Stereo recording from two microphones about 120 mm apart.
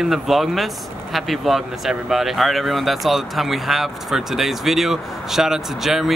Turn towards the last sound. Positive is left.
turn(degrees=0)  # may be behind; listen again after turning